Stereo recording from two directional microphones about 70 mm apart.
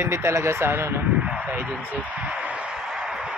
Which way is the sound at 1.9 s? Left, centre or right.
Right.